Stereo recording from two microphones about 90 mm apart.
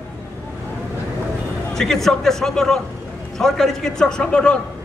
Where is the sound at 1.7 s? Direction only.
5° left (ahead or behind).